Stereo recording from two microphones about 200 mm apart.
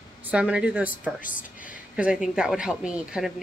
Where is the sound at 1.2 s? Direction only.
40° left (ahead or behind).